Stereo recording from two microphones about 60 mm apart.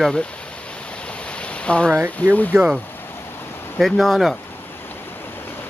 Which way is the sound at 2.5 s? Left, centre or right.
Right.